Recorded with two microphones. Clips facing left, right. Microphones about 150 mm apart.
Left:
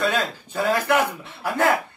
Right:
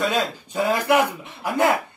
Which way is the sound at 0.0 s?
15° right (ahead or behind).